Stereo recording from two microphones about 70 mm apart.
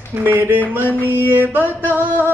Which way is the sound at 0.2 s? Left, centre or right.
Right.